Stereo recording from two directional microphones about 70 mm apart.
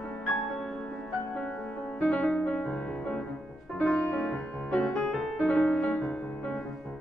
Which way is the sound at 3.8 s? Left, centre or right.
Centre.